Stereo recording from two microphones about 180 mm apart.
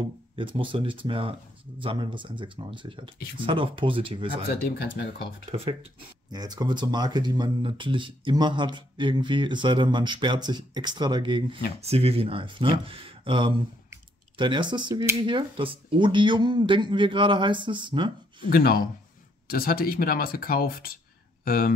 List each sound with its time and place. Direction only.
0.4 s speech: 30° right (ahead or behind)
4.5 s speech: 60° left (ahead or behind)
6.3 s speech: 20° right (ahead or behind)
18.4 s speech: 55° left (ahead or behind)